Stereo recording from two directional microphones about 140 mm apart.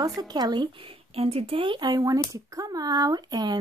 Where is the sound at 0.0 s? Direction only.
25° right (ahead or behind).